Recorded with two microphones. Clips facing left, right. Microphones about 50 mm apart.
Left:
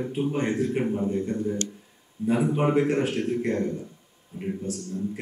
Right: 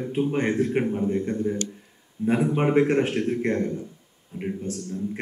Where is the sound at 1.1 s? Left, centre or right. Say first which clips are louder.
Right 2 dB; right.